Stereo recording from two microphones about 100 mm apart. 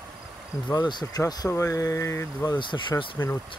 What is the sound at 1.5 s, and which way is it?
Speech, 30° left (ahead or behind).